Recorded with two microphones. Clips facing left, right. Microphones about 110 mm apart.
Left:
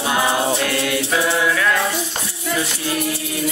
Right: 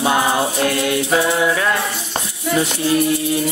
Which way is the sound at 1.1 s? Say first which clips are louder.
Right 2 dB; 30° right (ahead or behind).